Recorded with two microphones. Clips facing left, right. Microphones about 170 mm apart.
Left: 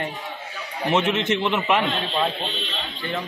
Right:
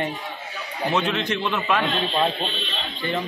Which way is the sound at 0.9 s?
20° left (ahead or behind).